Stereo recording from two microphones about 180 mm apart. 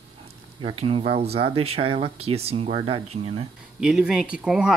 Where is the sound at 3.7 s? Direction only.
5° right (ahead or behind).